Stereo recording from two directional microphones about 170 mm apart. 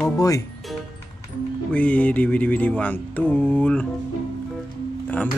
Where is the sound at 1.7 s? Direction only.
5° left (ahead or behind).